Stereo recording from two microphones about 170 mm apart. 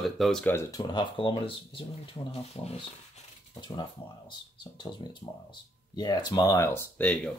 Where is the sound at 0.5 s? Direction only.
25° left (ahead or behind).